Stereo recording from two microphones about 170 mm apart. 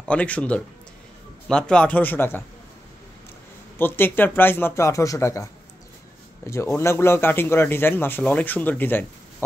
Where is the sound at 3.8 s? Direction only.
10° left (ahead or behind).